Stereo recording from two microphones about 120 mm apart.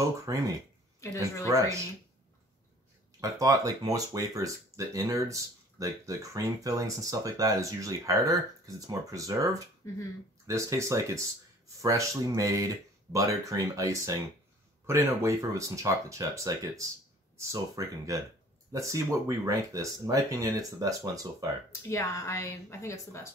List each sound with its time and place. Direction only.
0.3 s speech: 30° right (ahead or behind)
1.0 s speech: 25° left (ahead or behind)
1.5 s speech: 25° right (ahead or behind)
3.2 s speech: 30° right (ahead or behind)
21.8 s speech: 20° left (ahead or behind)